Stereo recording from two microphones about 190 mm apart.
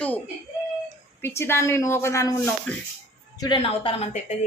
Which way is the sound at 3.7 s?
35° left (ahead or behind).